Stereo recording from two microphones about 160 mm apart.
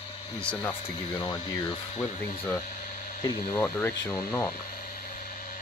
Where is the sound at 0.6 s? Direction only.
20° left (ahead or behind).